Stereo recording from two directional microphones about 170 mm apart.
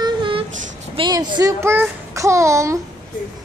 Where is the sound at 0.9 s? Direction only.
25° right (ahead or behind).